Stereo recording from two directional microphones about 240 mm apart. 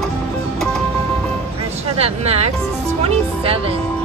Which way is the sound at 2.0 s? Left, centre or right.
Right.